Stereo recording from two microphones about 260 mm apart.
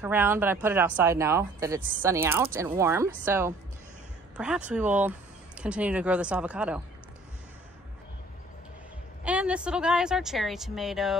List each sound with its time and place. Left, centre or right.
0.0 s speech: centre
9.2 s speech: centre